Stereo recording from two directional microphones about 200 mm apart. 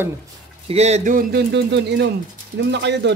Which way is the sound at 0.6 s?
30° right (ahead or behind).